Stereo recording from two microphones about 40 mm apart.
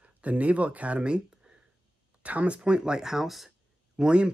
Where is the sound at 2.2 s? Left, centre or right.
Right; by 3.4 s centre.